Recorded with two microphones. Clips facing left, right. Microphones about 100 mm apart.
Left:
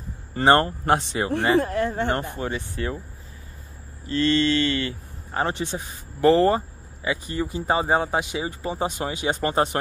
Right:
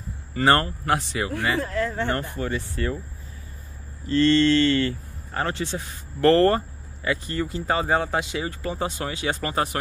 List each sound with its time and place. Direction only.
0.3 s speech: 30° left (ahead or behind)
4.1 s speech: 10° left (ahead or behind)